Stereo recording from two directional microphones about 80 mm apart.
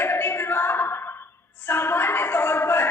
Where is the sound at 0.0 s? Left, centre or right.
Left.